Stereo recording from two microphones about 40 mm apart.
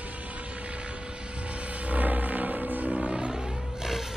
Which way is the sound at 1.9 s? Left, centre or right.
Right.